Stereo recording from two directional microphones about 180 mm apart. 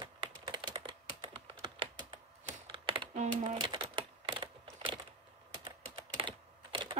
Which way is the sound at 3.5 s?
25° right (ahead or behind).